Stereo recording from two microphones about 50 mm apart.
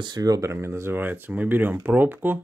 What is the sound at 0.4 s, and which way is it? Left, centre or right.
Speech, right.